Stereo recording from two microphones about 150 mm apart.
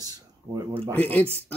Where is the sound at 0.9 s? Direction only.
10° left (ahead or behind).